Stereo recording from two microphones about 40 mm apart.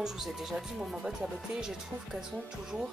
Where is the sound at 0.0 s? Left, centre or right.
Centre.